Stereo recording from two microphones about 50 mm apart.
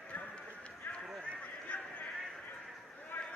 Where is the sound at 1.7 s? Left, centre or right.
Left.